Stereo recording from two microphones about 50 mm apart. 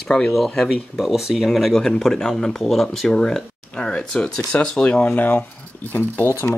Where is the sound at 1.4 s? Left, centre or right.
Centre.